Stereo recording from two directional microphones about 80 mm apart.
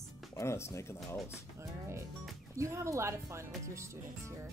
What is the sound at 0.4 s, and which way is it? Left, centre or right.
Speech, left.